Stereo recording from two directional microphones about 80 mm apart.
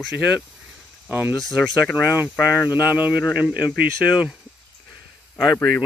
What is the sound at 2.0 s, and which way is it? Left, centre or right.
Speech, centre.